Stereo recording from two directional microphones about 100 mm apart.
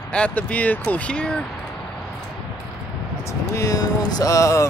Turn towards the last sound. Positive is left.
turn(degrees=35)  # may be behind; listen again after turning